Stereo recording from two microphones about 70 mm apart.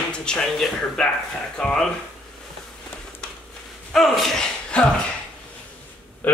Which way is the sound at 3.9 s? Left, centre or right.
Centre.